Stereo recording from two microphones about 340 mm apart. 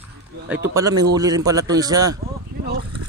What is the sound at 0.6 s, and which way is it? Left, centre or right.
A man's voice, centre.